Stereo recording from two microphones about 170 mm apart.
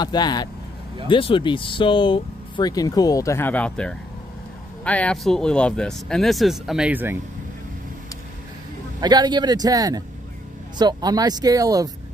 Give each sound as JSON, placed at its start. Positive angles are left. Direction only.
{"t": 0.0, "sound": "speech", "side_deg": 25}
{"t": 9.0, "sound": "speech", "side_deg": -25}